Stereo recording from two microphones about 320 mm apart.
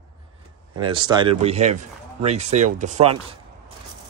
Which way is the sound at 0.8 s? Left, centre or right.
Centre.